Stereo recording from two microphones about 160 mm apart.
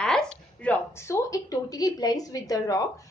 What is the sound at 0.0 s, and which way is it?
A woman's voice, 5° left (ahead or behind).